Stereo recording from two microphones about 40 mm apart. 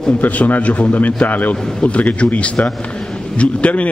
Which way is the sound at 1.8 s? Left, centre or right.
Left.